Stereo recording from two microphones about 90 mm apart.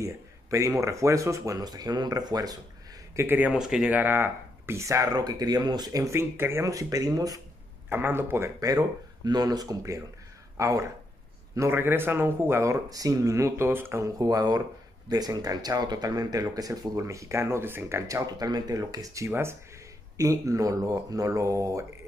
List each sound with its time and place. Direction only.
0.0 s speech: 35° right (ahead or behind)
3.2 s speech: 20° right (ahead or behind)
3.5 s speech: 5° right (ahead or behind)
3.9 s speech: 20° right (ahead or behind); by 6.1 s 45° right (ahead or behind)
6.1 s speech: 25° right (ahead or behind)
6.6 s speech: 40° right (ahead or behind)
7.9 s speech: 25° right (ahead or behind)
8.5 s speech: 40° right (ahead or behind)
11.7 s speech: 25° right (ahead or behind)
14.0 s speech: 40° right (ahead or behind)